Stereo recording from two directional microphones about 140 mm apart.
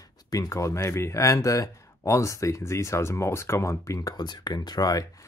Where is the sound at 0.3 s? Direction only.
25° left (ahead or behind).